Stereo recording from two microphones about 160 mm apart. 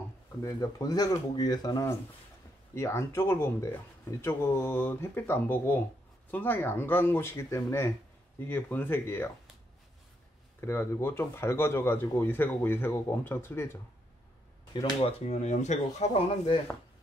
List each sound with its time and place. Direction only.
0.4 s speech: 20° left (ahead or behind)
10.6 s speech: 15° left (ahead or behind)
14.7 s speech: 30° left (ahead or behind)